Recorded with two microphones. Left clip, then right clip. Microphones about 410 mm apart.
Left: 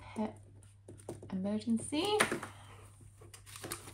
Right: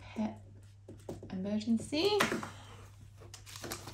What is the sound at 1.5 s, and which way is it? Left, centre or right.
Speech, centre.